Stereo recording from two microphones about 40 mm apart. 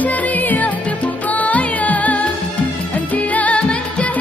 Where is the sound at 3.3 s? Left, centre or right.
Left.